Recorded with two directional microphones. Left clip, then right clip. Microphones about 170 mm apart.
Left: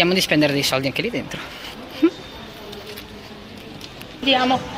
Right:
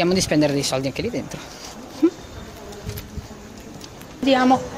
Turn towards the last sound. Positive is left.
turn(degrees=-50)  # may be behind; listen again after turning